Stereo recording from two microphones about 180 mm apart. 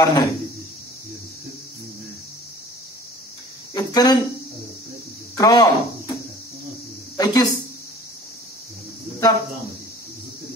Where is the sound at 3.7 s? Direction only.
20° left (ahead or behind).